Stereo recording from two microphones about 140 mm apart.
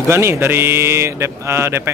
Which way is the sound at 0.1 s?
15° right (ahead or behind).